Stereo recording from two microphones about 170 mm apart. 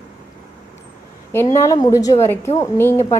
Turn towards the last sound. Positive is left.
turn(degrees=15)  # may be behind; listen again after turning